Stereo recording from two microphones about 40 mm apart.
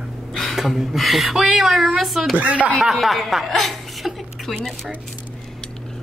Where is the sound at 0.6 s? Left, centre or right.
Centre.